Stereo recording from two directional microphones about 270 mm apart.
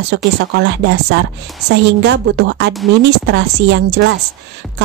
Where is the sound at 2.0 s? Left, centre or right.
Right.